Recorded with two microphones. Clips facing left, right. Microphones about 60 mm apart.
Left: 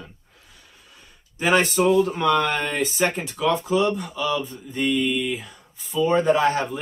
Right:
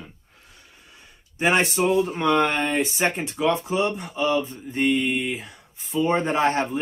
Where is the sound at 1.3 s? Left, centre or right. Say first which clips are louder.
Left 1 dB; right.